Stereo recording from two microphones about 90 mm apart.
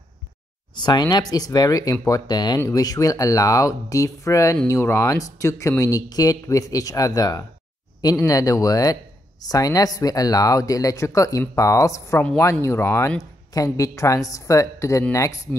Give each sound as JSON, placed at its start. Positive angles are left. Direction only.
{"t": 0.7, "sound": "speech", "side_deg": 50}
{"t": 13.2, "sound": "speech", "side_deg": 40}